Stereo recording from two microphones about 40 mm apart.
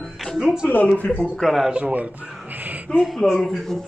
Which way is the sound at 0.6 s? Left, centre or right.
Left.